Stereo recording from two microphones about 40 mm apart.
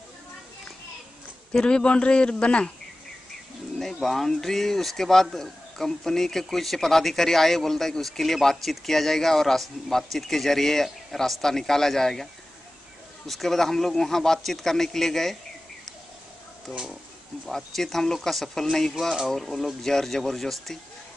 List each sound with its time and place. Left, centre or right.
1.5 s a man's voice: left
3.8 s speech: centre
13.3 s speech: centre
16.7 s speech: centre
17.5 s speech: centre